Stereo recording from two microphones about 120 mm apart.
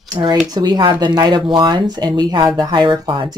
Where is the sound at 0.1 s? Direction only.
35° right (ahead or behind).